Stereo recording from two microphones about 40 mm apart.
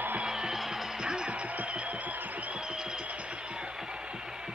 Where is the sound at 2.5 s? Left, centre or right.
Right.